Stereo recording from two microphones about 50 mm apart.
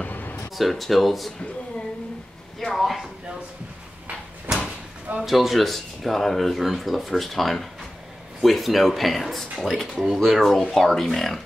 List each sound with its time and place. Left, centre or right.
0.0 s a sound: left
0.6 s speech: centre
2.6 s speech: centre
5.2 s speech: centre